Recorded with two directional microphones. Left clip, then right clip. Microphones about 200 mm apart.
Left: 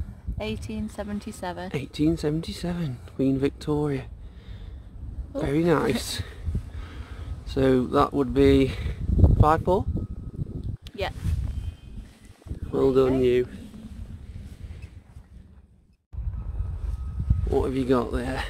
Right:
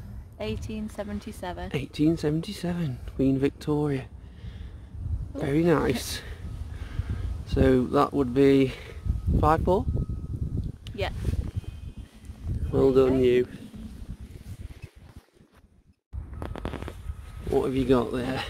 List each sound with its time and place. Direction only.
0.4 s a woman's voice: 15° left (ahead or behind)
1.4 s speech: 25° left (ahead or behind)
1.7 s speech: centre (ahead or behind)
5.4 s speech: centre (ahead or behind)
7.4 s speech: 5° left (ahead or behind)
12.6 s speech: 5° right (ahead or behind)
17.5 s speech: centre (ahead or behind)